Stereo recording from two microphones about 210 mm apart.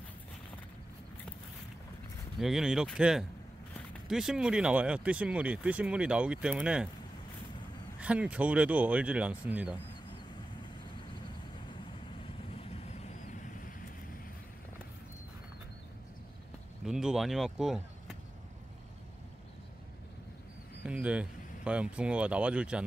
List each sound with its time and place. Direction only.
2.3 s speech: centre (ahead or behind)
8.0 s speech: 5° right (ahead or behind)
12.5 s vehicle: 30° left (ahead or behind)
16.8 s speech: 5° right (ahead or behind)
20.8 s speech: 5° right (ahead or behind)